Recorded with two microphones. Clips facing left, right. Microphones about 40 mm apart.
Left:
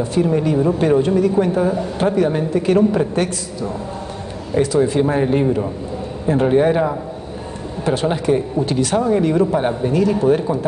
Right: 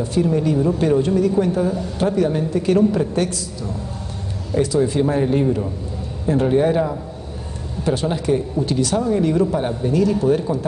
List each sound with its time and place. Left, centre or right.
0.0 s a woman's voice: left